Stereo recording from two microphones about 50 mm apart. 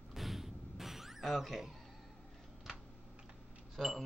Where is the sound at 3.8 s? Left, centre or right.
Centre.